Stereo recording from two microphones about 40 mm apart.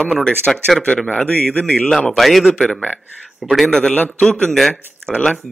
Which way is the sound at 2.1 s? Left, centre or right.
Centre.